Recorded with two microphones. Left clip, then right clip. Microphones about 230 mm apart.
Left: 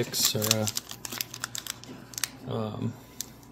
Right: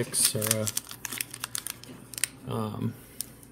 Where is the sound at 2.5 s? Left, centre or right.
Right.